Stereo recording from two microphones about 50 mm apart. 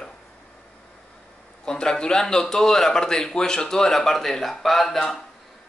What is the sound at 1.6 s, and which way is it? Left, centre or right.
Speech, centre.